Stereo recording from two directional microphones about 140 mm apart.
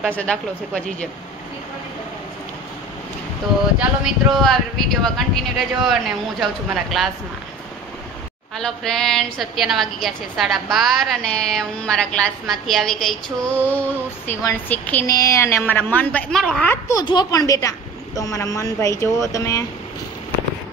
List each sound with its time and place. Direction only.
0.0 s a woman's voice: 10° left (ahead or behind)
3.7 s a woman's voice: centre (ahead or behind)
8.5 s a woman's voice: 5° left (ahead or behind)
15.0 s a woman's voice: 25° left (ahead or behind); by 16.7 s 5° left (ahead or behind)
16.7 s speech: 20° left (ahead or behind)
17.0 s speech: 30° left (ahead or behind)